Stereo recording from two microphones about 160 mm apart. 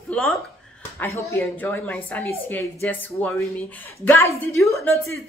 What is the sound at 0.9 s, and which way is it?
A woman's voice, 15° left (ahead or behind).